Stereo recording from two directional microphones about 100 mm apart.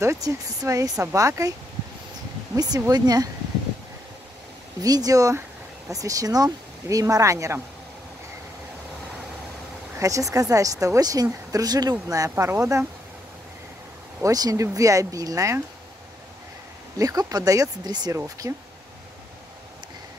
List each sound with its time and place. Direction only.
0.0 s a woman's voice: 30° right (ahead or behind)
2.5 s a woman's voice: 40° right (ahead or behind)
4.8 s a woman's voice: 40° right (ahead or behind)
9.9 s a woman's voice: 35° right (ahead or behind)
14.2 s a woman's voice: 35° right (ahead or behind)
17.0 s a woman's voice: 40° right (ahead or behind)
18.1 s a woman's voice: 30° right (ahead or behind)